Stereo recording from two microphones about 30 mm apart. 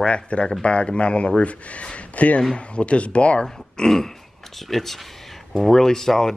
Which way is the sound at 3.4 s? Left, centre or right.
Centre.